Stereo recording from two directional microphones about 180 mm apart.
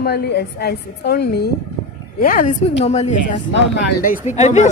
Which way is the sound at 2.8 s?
40° left (ahead or behind).